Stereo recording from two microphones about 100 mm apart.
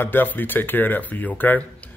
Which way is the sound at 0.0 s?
20° left (ahead or behind).